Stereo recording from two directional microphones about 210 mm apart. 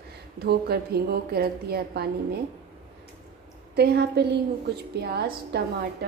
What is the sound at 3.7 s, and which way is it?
A woman's voice, 50° right (ahead or behind).